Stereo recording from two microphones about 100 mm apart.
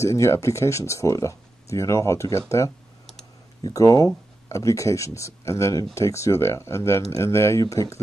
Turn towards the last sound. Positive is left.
turn(degrees=35)  # may be behind; listen again after turning